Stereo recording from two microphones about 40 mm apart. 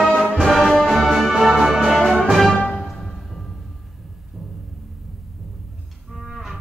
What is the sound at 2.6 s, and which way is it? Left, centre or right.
Music, left.